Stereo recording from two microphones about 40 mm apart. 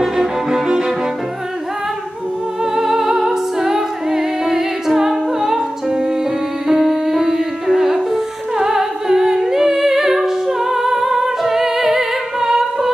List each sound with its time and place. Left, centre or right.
0.0 s music: centre
2.6 s music: centre